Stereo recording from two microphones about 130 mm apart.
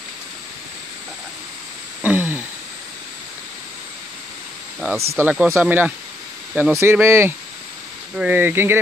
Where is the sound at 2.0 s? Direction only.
15° right (ahead or behind).